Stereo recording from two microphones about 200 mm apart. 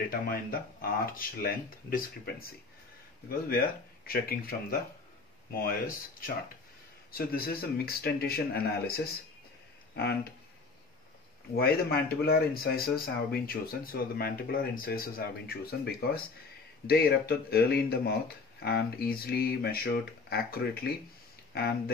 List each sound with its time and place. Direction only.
0.1 s speech: 45° left (ahead or behind)
3.4 s speech: 50° left (ahead or behind)
11.5 s speech: 50° left (ahead or behind)